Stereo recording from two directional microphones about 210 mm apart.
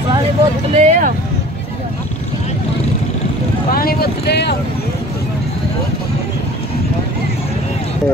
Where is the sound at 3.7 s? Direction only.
45° left (ahead or behind).